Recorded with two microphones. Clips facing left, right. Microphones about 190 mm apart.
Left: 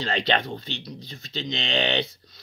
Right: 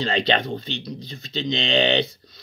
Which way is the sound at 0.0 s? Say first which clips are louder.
Right 3 dB; 20° right (ahead or behind).